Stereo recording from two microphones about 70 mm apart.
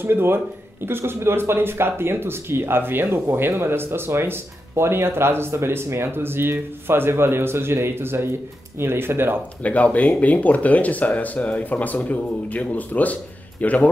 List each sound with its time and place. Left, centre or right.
0.0 s speech: right
9.6 s speech: left